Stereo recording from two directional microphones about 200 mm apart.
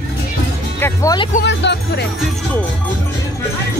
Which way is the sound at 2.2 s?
Centre (ahead or behind).